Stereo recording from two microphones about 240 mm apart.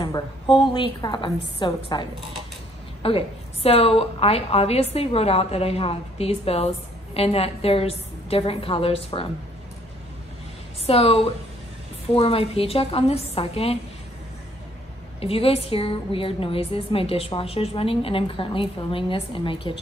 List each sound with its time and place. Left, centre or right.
0.0 s a woman's voice: centre
10.9 s a woman's voice: left
15.1 s a woman's voice: left